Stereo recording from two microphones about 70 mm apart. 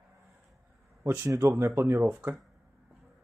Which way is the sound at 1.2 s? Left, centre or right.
Right.